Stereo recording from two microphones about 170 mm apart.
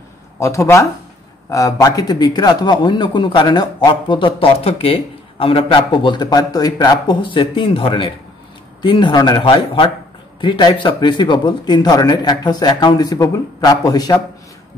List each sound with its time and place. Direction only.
0.4 s speech: 15° left (ahead or behind)